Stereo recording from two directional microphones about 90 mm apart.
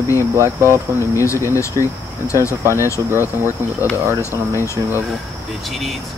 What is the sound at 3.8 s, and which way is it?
Speech, 30° left (ahead or behind).